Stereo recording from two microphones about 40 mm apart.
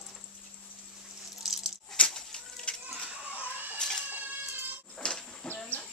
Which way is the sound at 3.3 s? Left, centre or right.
Right.